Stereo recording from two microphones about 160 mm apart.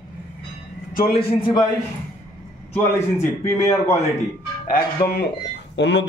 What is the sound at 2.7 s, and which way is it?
A man's voice, 15° left (ahead or behind).